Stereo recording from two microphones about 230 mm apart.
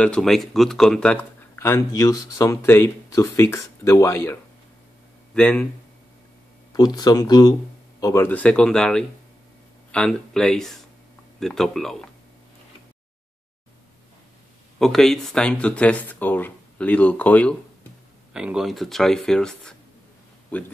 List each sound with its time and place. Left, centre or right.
0.0 s speech: centre
6.7 s speech: centre
14.8 s speech: centre
18.3 s speech: centre